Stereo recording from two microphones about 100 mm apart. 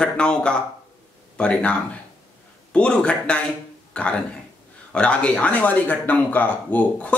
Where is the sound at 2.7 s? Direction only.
10° left (ahead or behind).